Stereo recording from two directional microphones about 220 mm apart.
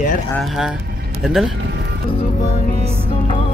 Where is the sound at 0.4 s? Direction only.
Centre (ahead or behind).